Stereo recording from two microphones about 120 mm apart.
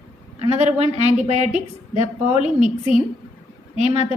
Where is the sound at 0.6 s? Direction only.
70° right (ahead or behind).